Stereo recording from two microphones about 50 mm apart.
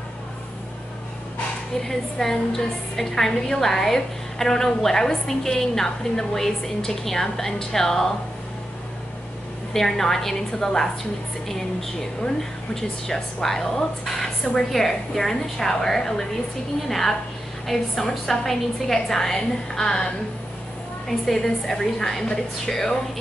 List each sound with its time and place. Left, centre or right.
1.8 s a woman's voice: centre
9.8 s a woman's voice: centre
12.2 s a woman's voice: centre
21.3 s a woman's voice: centre